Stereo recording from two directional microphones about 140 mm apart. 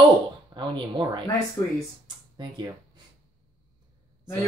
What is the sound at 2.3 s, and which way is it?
Speech, 30° right (ahead or behind).